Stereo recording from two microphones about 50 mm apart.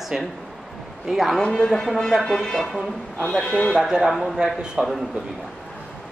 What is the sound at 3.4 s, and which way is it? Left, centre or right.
Speech, left.